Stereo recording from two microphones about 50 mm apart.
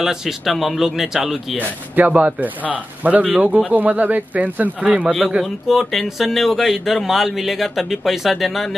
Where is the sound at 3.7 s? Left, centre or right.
Right.